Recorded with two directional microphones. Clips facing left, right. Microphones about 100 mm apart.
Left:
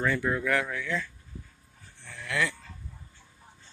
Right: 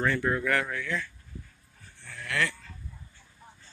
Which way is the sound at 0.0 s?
10° left (ahead or behind).